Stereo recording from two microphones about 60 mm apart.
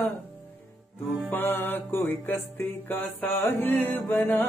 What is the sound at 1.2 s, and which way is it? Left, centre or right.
Music, left.